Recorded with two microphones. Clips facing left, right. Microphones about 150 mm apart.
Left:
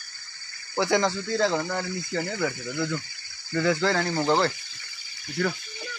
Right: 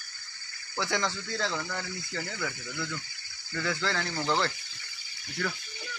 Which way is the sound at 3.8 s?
45° left (ahead or behind).